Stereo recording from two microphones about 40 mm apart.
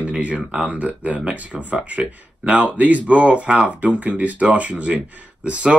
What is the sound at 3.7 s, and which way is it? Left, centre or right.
Speech, right.